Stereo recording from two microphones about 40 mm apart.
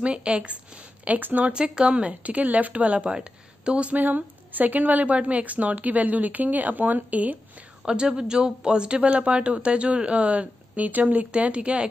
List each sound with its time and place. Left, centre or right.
0.0 s speech: right
1.2 s speech: right
1.5 s speech: right
1.9 s speech: right
3.7 s speech: right
5.0 s speech: right
7.8 s speech: right
11.3 s speech: right